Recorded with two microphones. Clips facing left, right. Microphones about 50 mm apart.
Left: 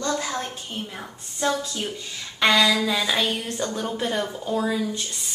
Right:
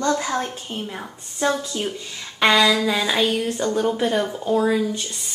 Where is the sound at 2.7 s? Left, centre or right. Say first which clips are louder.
Right 2 dB; right.